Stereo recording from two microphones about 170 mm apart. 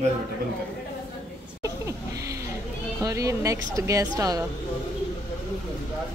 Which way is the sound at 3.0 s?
20° right (ahead or behind).